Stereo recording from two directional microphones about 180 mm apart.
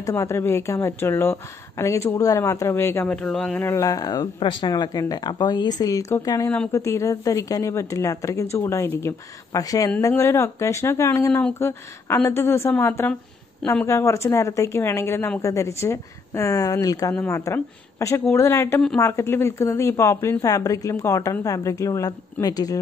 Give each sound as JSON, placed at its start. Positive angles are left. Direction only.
{"t": 0.0, "sound": "speech", "side_deg": 15}
{"t": 3.6, "sound": "speech", "side_deg": 15}